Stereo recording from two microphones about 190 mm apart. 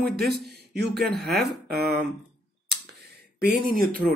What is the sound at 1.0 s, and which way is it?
Speech, centre (ahead or behind).